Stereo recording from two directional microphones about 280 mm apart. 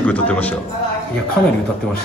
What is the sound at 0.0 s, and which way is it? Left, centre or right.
Speech, centre.